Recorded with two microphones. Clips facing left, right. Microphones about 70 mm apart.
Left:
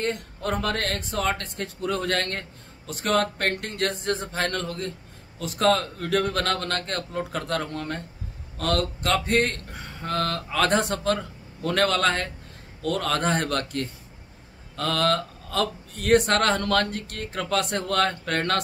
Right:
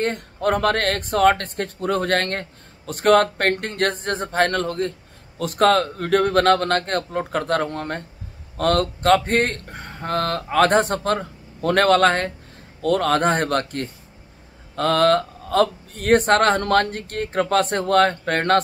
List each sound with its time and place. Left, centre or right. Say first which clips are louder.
0.0 s speech: right 6 dB; right